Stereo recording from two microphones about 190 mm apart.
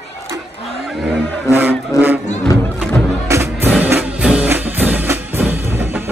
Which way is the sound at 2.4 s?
15° left (ahead or behind).